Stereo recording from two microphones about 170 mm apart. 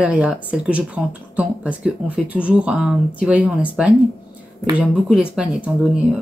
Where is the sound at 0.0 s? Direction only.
5° right (ahead or behind).